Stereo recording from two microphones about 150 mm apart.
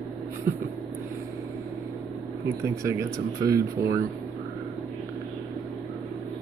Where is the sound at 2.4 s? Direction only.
20° right (ahead or behind).